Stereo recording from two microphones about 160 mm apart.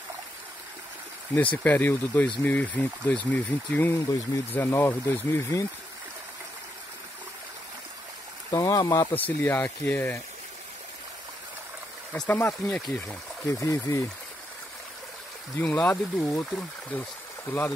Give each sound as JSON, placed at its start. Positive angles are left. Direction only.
{"t": 1.3, "sound": "speech", "side_deg": 10}
{"t": 8.5, "sound": "speech", "side_deg": 20}
{"t": 9.1, "sound": "speech", "side_deg": 10}
{"t": 12.3, "sound": "speech", "side_deg": 10}
{"t": 15.5, "sound": "speech", "side_deg": 10}
{"t": 17.5, "sound": "speech", "side_deg": 10}